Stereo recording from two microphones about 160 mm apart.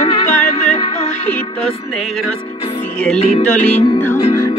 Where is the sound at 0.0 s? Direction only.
35° left (ahead or behind).